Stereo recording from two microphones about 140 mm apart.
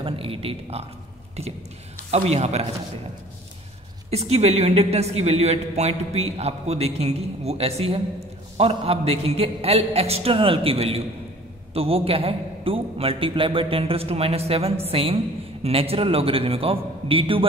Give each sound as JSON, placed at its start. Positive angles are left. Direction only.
{"t": 0.0, "sound": "a woman's voice", "side_deg": -40}
{"t": 2.0, "sound": "a woman's voice", "side_deg": -50}
{"t": 4.1, "sound": "a woman's voice", "side_deg": -50}